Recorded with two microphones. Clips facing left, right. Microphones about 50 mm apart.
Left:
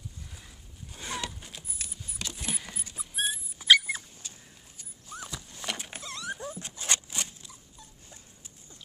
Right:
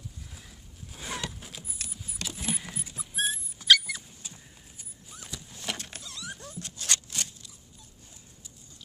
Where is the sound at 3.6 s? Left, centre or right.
Centre.